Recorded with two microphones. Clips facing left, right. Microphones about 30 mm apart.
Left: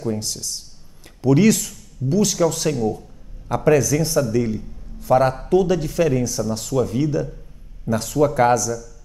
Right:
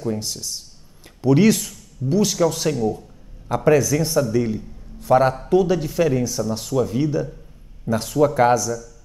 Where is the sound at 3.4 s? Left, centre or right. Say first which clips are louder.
Even; centre.